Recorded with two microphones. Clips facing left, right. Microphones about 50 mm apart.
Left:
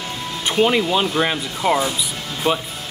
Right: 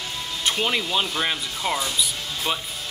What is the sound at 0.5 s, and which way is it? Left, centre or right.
Speech, centre.